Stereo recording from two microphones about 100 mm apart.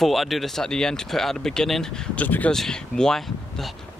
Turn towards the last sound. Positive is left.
turn(degrees=5)  # may be behind; listen again after turning